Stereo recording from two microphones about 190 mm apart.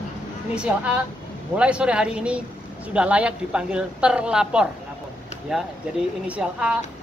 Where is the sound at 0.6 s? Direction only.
5° right (ahead or behind).